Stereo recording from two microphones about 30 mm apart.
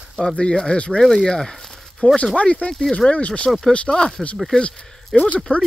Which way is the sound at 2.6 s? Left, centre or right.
Left.